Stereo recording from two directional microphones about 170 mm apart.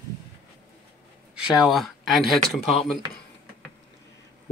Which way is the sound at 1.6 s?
Centre (ahead or behind).